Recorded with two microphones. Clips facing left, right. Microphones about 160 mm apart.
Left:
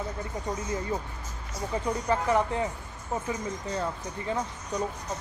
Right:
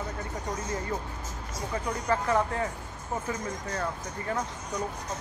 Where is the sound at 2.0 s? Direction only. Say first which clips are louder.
Even; 15° left (ahead or behind).